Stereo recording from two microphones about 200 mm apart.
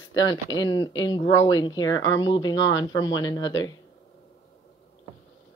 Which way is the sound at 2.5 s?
70° left (ahead or behind).